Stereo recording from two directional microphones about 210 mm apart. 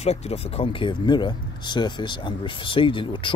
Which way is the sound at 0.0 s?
30° left (ahead or behind).